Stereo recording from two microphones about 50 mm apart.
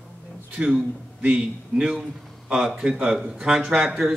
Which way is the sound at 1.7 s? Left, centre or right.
Centre.